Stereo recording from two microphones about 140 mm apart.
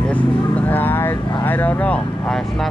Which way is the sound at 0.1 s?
10° left (ahead or behind).